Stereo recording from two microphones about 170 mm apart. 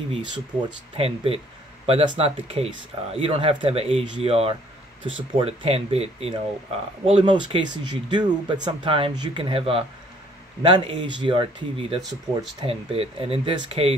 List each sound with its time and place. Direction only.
0.1 s speech: 25° right (ahead or behind)